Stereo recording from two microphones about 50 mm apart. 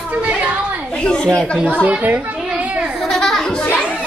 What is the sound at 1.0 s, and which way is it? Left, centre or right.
Speech, centre.